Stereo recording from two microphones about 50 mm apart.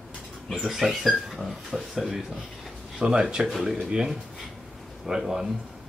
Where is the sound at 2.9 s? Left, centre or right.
Centre.